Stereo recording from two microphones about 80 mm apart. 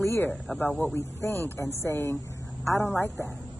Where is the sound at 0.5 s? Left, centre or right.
Centre.